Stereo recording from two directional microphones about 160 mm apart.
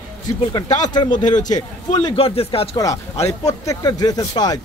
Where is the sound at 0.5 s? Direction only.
25° left (ahead or behind).